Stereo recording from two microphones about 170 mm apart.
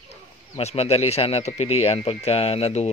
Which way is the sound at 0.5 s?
35° left (ahead or behind).